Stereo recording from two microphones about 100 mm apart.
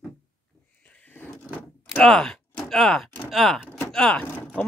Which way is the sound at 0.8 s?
15° left (ahead or behind).